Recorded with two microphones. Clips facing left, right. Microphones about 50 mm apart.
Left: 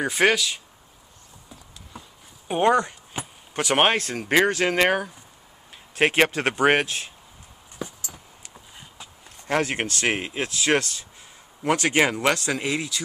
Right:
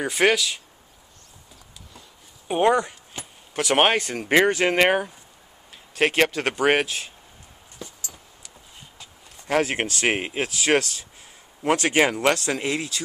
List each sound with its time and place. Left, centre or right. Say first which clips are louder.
0.0 s speech: even; centre
2.4 s speech: even; centre
3.1 s a sound: left 5 dB; centre
3.5 s speech: right 1 dB; centre
5.9 s speech: left 1 dB; centre
7.8 s a sound: left 5 dB; left
9.5 s speech: right 1 dB; centre